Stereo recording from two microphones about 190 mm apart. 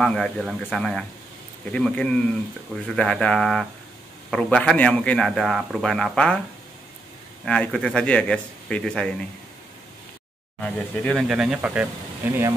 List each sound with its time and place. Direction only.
0.0 s a man's voice: 5° left (ahead or behind)
7.4 s a man's voice: 5° left (ahead or behind)
10.6 s a man's voice: 5° left (ahead or behind)